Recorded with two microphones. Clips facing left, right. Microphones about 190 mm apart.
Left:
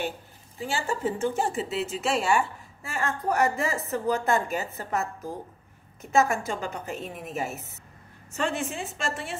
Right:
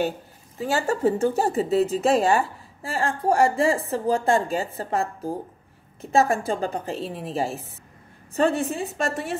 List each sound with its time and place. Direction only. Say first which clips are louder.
0.6 s a woman's voice: right 6 dB; 40° right (ahead or behind)